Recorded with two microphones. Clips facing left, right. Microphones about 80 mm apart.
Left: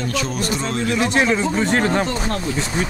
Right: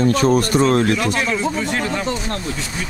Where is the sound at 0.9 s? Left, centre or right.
Left.